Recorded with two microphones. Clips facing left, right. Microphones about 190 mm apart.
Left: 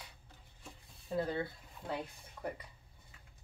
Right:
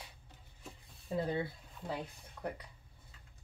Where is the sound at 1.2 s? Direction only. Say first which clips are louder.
Even; 15° right (ahead or behind).